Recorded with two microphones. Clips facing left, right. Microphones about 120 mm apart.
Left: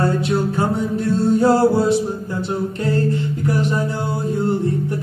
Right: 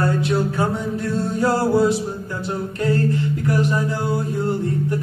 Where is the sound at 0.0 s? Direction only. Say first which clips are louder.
Left 1 dB; 25° left (ahead or behind).